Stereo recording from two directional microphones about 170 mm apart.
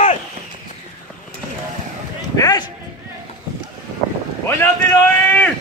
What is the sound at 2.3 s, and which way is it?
Speech, 20° left (ahead or behind).